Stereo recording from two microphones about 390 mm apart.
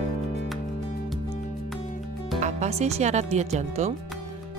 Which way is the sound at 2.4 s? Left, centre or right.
Centre.